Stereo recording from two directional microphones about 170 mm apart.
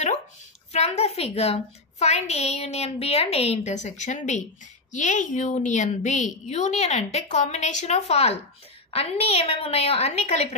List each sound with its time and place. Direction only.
0.7 s a woman's voice: 40° left (ahead or behind)